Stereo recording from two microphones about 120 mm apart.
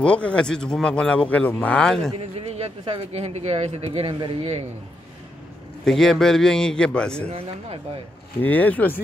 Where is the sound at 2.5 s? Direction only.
60° right (ahead or behind).